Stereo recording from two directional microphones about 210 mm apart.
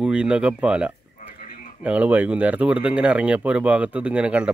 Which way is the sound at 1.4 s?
35° left (ahead or behind).